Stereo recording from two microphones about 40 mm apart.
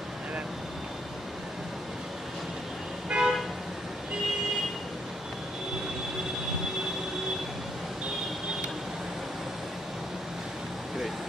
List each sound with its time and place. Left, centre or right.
3.1 s vehicle: centre